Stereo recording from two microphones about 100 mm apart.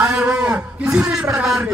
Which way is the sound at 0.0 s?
10° right (ahead or behind).